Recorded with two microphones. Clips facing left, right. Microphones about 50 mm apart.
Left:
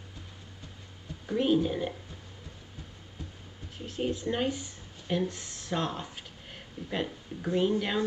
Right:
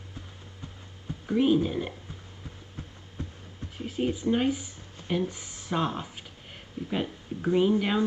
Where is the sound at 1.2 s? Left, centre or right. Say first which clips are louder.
Right 3 dB; centre.